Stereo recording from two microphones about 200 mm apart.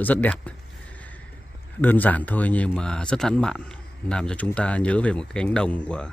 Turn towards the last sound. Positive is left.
turn(degrees=5)  # may be behind; listen again after turning